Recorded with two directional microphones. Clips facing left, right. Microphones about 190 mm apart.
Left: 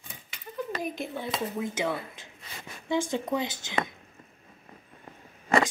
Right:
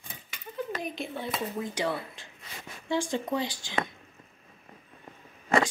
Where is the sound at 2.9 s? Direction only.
15° left (ahead or behind).